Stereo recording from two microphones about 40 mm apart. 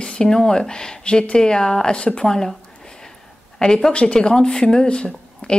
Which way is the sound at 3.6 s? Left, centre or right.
Centre.